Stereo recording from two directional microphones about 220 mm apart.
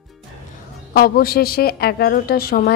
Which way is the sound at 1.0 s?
45° left (ahead or behind).